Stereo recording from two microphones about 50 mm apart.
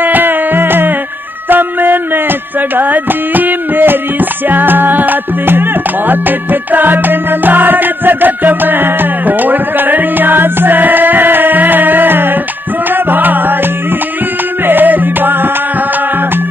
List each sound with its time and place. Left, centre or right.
0.0 s music: right
1.5 s a sound: right
12.9 s music: right
14.7 s music: right